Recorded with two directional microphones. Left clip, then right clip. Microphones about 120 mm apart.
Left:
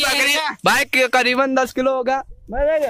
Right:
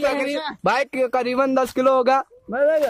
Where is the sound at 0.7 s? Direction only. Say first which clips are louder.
Left 4 dB; 5° left (ahead or behind).